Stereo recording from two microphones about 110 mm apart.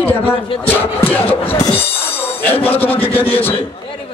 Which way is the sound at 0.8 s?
15° left (ahead or behind).